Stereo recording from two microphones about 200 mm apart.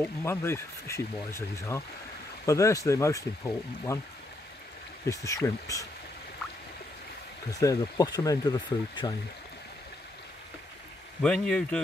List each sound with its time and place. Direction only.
0.0 s speech: 10° left (ahead or behind)
5.0 s speech: 15° left (ahead or behind)
7.5 s speech: 15° left (ahead or behind)
11.2 s speech: 5° left (ahead or behind)